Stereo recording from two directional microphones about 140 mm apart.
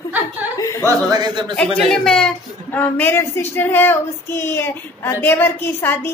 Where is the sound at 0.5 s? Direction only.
20° left (ahead or behind).